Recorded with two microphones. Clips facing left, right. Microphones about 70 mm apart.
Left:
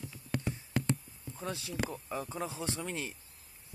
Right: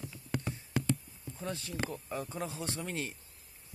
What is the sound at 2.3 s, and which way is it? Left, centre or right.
Speech, left.